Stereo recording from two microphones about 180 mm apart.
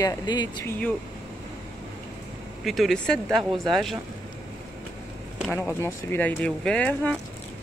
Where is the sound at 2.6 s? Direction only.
Centre (ahead or behind).